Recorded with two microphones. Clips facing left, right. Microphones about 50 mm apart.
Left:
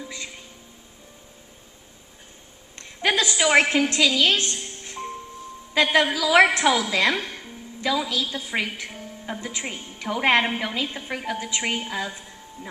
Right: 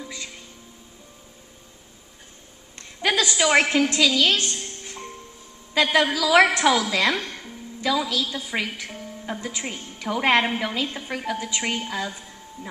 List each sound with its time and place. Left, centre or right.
0.0 s music: centre
3.0 s a woman's voice: centre